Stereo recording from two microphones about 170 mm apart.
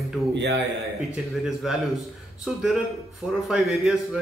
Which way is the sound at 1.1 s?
Centre (ahead or behind).